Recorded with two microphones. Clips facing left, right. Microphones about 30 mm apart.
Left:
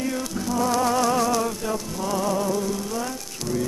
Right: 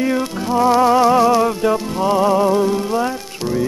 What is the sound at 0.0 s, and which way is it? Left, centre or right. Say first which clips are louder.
Music: right 8 dB; right.